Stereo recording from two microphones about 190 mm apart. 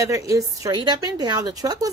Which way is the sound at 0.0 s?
15° right (ahead or behind).